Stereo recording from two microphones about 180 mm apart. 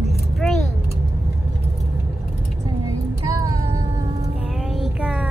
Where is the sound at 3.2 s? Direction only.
15° right (ahead or behind).